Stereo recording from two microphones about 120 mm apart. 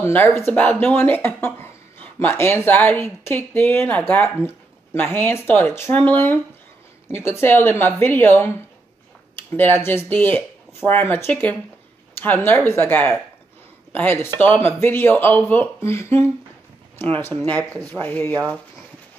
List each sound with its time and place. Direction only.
0.0 s a woman's voice: 20° left (ahead or behind)